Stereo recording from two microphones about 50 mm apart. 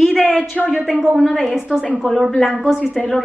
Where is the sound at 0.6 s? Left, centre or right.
Centre.